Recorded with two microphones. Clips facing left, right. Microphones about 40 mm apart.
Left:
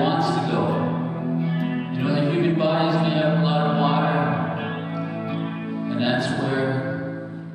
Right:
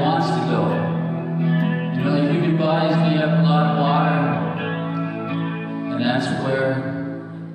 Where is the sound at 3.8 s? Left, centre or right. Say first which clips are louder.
Right 2 dB; centre.